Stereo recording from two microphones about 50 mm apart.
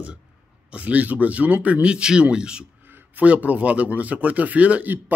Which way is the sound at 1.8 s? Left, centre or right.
Centre.